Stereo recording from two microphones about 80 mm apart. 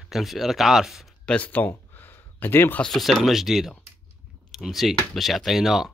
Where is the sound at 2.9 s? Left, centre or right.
Centre.